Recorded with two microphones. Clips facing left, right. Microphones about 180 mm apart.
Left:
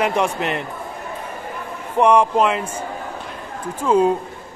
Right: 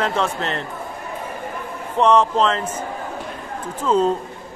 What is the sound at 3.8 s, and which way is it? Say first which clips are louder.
Speech: left 2 dB; 10° left (ahead or behind).